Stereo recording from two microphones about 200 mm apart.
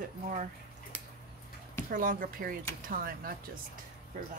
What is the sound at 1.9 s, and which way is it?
A woman's voice, 45° right (ahead or behind).